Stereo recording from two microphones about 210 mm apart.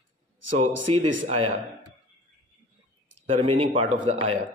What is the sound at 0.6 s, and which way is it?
Speech, 35° right (ahead or behind).